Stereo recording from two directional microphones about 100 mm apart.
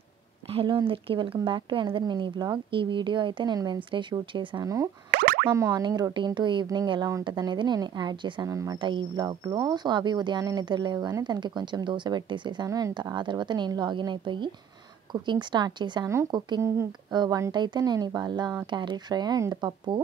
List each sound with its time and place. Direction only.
0.5 s speech: 70° right (ahead or behind)
3.5 s speech: 40° right (ahead or behind)
4.3 s speech: 55° right (ahead or behind)
5.5 s speech: 30° right (ahead or behind)
5.9 s speech: 45° right (ahead or behind)
8.8 s speech: 50° right (ahead or behind)
12.6 s speech: 35° right (ahead or behind)
12.9 s speech: 50° right (ahead or behind)